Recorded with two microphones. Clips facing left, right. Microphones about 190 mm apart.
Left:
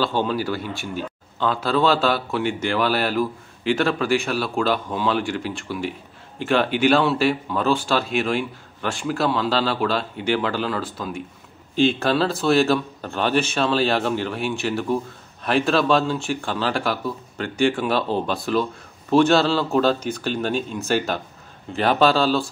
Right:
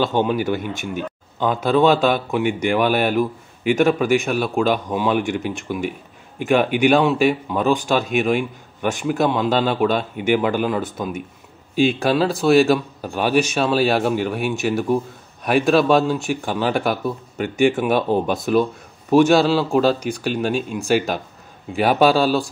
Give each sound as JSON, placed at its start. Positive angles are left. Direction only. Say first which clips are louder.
{"t": 0.0, "sound": "a man's voice", "louder": "right 3 dB", "side_deg": -15}